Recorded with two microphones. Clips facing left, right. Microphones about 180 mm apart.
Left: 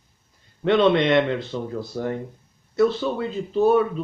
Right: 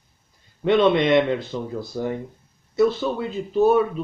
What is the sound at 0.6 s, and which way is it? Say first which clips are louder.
Speech: even; 5° right (ahead or behind).